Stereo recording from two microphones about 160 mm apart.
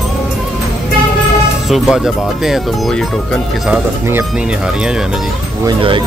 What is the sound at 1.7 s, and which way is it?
Speech, centre (ahead or behind).